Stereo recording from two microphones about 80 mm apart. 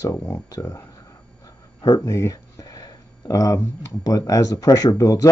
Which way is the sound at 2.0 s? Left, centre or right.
Left.